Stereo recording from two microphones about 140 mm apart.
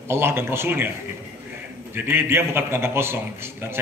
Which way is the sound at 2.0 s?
15° right (ahead or behind).